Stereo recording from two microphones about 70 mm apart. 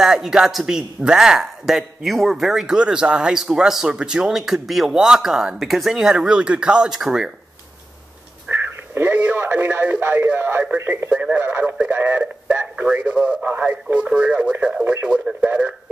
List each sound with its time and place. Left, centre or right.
0.0 s speech: centre
8.5 s speech: right
11.1 s speech: centre